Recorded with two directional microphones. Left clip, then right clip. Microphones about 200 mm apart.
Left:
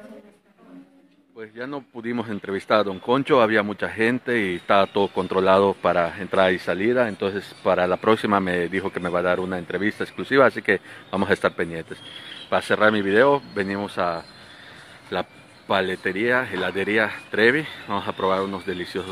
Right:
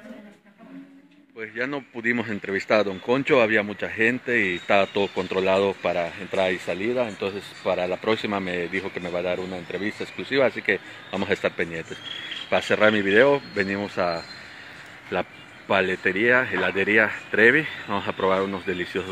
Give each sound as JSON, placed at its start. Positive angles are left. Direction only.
{"t": 1.7, "sound": "speech", "side_deg": 0}
{"t": 15.7, "sound": "speech", "side_deg": 5}